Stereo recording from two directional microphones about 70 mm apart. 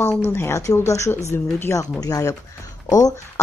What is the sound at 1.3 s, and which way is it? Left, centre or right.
Speech, left.